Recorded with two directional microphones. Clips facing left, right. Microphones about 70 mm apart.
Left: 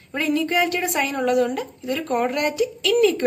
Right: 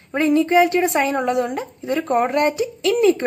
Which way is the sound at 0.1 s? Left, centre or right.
Right.